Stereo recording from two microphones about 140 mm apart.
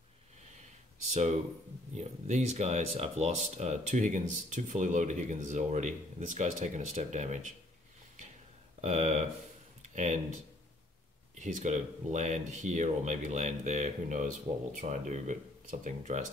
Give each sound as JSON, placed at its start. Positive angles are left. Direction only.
{"t": 1.1, "sound": "speech", "side_deg": -55}
{"t": 8.8, "sound": "speech", "side_deg": -60}
{"t": 9.8, "sound": "a sound", "side_deg": -60}
{"t": 11.3, "sound": "speech", "side_deg": -65}